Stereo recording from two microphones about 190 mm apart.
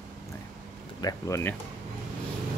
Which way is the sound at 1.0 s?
15° left (ahead or behind).